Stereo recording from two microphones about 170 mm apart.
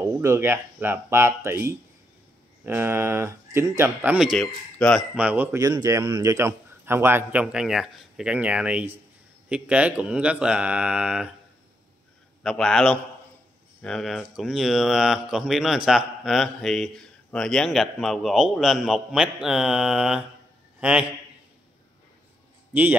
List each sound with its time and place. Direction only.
0.0 s speech: 15° right (ahead or behind); by 5.0 s 5° left (ahead or behind)
5.1 s speech: 10° right (ahead or behind)
12.4 s speech: 5° left (ahead or behind)
22.7 s a man's voice: 10° right (ahead or behind)